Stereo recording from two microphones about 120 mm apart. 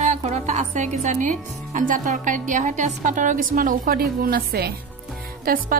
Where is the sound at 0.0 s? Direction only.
75° right (ahead or behind); by 3.9 s 90° right.